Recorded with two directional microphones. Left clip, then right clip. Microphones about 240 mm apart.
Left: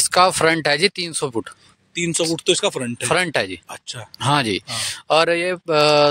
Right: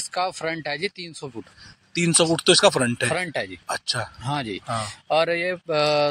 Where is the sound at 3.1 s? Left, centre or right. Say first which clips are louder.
Left 7 dB; left.